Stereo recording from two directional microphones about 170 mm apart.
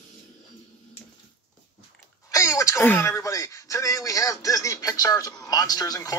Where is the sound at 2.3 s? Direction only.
20° left (ahead or behind).